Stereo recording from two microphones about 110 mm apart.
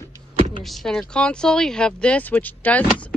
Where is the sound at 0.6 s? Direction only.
Centre (ahead or behind).